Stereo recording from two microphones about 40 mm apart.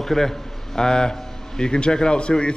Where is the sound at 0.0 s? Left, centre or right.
Centre.